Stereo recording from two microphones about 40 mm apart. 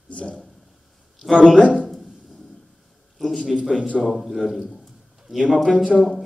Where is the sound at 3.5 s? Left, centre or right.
Centre.